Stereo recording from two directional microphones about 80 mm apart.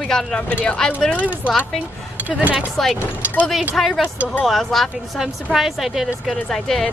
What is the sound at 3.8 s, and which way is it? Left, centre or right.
A woman's voice, centre.